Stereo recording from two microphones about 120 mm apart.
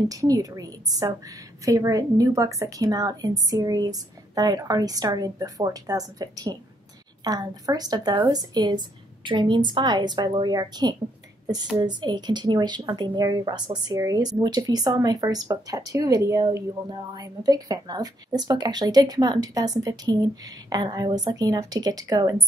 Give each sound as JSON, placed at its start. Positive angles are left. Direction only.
{"t": 0.1, "sound": "a woman's voice", "side_deg": -30}